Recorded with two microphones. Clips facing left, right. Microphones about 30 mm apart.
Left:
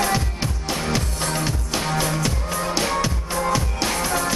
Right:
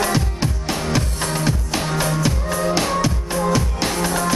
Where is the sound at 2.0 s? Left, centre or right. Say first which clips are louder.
Right 2 dB; right.